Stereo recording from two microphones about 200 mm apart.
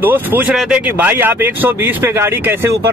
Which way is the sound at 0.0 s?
10° right (ahead or behind).